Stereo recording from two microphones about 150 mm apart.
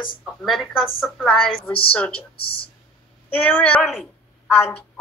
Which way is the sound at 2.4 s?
35° left (ahead or behind).